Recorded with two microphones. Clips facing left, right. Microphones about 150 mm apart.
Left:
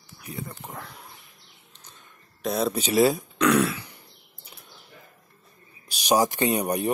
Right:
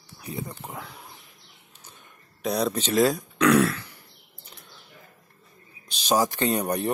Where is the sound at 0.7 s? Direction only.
Centre (ahead or behind).